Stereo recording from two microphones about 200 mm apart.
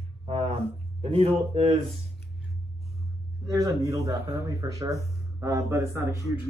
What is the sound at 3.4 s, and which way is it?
Speech, 15° right (ahead or behind).